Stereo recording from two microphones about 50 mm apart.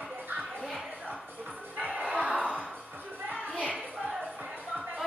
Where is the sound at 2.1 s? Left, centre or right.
Right.